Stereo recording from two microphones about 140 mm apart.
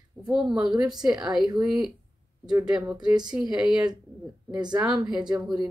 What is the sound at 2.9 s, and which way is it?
Speech, 30° right (ahead or behind).